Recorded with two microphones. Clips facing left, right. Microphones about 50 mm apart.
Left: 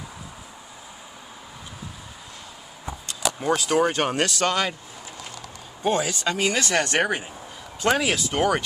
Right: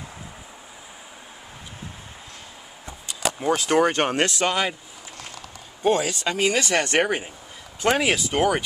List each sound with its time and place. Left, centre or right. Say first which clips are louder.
3.1 s a sound: right 1 dB; centre
3.5 s speech: right 2 dB; right
5.9 s speech: right 2 dB; centre